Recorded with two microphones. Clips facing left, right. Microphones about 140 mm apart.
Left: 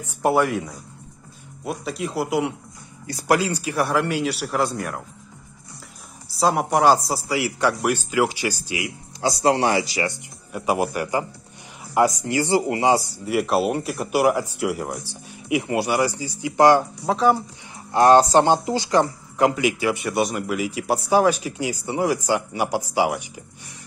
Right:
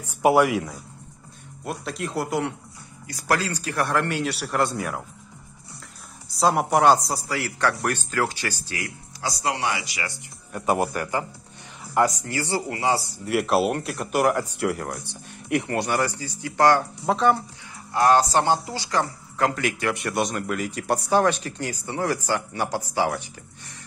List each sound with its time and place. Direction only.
0.2 s speech: 10° right (ahead or behind)
3.1 s speech: 25° left (ahead or behind)
3.3 s speech: 15° left (ahead or behind)
6.3 s speech: centre (ahead or behind)
7.2 s speech: 10° left (ahead or behind)
9.2 s speech: 30° left (ahead or behind)
10.5 s speech: 5° left (ahead or behind)
13.2 s speech: centre (ahead or behind)
17.0 s speech: centre (ahead or behind)
17.9 s speech: 25° left (ahead or behind)